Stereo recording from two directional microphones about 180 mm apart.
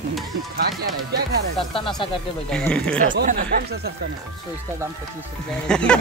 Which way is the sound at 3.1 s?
50° right (ahead or behind).